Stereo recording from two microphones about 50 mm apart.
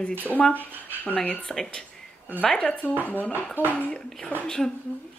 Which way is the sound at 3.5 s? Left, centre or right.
Right.